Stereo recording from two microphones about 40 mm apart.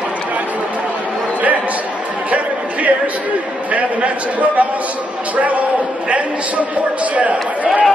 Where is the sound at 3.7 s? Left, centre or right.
Right.